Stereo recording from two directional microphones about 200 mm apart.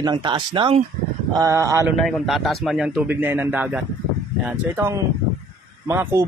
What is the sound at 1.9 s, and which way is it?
A man's voice, centre (ahead or behind).